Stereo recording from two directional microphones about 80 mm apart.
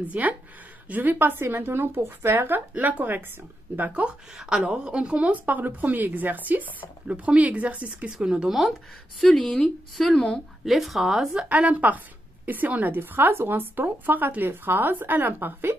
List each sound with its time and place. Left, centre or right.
0.1 s a woman's voice: right; by 10.4 s centre
10.6 s speech: centre
11.4 s a woman's voice: centre